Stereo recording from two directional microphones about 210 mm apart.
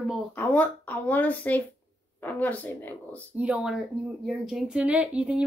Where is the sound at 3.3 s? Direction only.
5° right (ahead or behind).